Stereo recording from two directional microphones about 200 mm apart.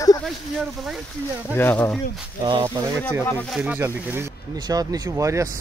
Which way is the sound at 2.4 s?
20° right (ahead or behind).